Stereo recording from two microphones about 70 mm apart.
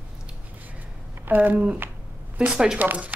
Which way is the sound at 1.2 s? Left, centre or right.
Right.